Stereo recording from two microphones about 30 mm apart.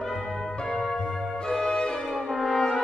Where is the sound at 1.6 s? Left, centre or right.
Centre.